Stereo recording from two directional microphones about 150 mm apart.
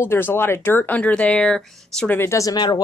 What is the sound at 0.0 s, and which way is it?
Speech, 15° left (ahead or behind).